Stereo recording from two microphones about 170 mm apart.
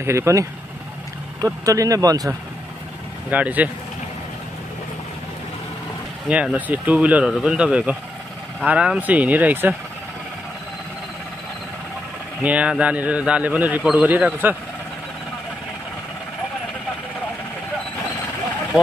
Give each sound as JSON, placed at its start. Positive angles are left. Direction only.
{"t": 0.0, "sound": "a man's voice", "side_deg": -15}
{"t": 3.3, "sound": "a man's voice", "side_deg": -10}
{"t": 6.2, "sound": "a man's voice", "side_deg": -5}
{"t": 12.4, "sound": "a man's voice", "side_deg": -5}